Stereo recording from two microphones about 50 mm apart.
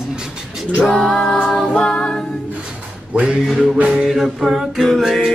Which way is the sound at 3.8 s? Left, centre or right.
Centre.